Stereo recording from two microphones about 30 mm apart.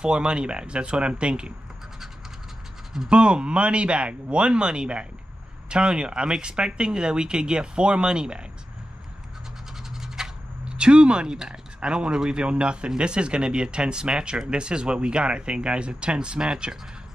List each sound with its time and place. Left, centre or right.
0.0 s a man's voice: right
3.1 s a man's voice: right
9.8 s scratch: centre
10.6 s a sound: right
11.2 s speech: right
11.8 s a man's voice: right